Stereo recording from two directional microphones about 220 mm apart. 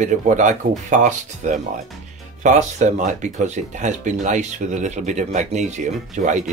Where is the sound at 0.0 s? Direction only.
35° right (ahead or behind).